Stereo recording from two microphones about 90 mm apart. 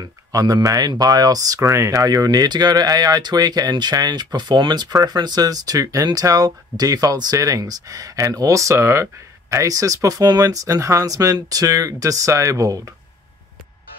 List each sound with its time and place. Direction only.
0.0 s speech: 45° right (ahead or behind)